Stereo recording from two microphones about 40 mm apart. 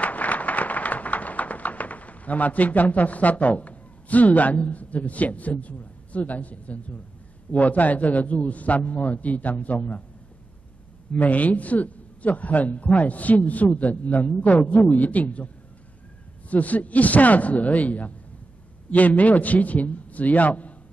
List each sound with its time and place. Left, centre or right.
0.0 s a sound: left
7.5 s a man's voice: left
11.1 s a man's voice: left